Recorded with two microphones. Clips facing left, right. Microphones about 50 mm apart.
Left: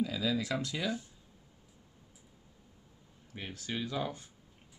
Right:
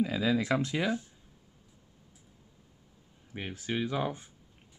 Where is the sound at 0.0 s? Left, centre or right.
Right.